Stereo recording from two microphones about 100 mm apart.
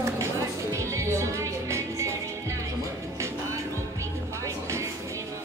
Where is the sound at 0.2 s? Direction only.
30° right (ahead or behind).